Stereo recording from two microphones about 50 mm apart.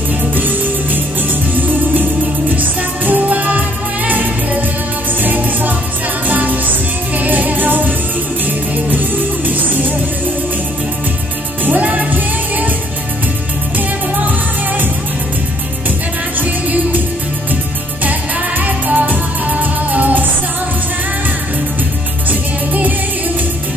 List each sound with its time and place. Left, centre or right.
0.3 s music: right
2.5 s music: right
9.5 s music: right
11.6 s music: right
18.6 s music: right
22.3 s music: right